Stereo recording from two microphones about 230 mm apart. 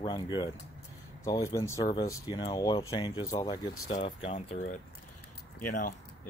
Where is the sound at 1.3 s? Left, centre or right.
Centre.